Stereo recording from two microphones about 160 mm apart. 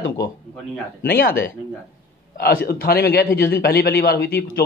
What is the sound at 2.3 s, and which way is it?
A man's voice, 70° left (ahead or behind).